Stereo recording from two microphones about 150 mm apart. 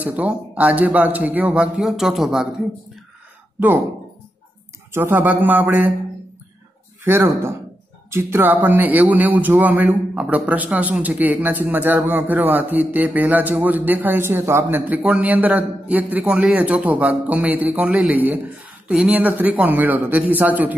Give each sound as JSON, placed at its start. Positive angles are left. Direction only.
{"t": 0.0, "sound": "a man's voice", "side_deg": -10}
{"t": 3.5, "sound": "speech", "side_deg": -15}
{"t": 4.9, "sound": "a man's voice", "side_deg": -15}
{"t": 7.1, "sound": "a man's voice", "side_deg": -15}